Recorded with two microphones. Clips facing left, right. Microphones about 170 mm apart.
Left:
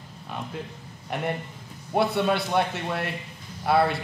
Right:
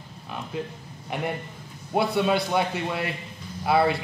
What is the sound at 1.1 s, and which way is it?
A man's voice, centre (ahead or behind).